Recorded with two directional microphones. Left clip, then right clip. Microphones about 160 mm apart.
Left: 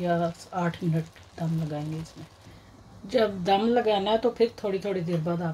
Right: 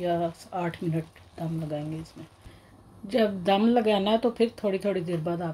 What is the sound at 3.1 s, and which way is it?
Speech, 20° right (ahead or behind).